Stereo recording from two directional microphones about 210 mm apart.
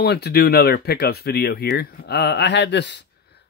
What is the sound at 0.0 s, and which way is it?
Speech, 50° left (ahead or behind).